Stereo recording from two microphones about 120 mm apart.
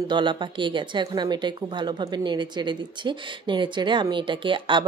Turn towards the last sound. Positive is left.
turn(degrees=-45)  # may be behind; listen again after turning